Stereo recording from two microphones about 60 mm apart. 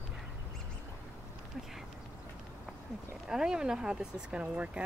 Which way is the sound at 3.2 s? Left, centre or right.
Centre.